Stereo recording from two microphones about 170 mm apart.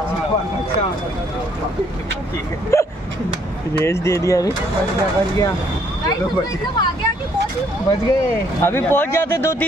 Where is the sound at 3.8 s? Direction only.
15° left (ahead or behind).